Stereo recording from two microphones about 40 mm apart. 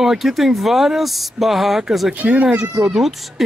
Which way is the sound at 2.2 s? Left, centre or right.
Right.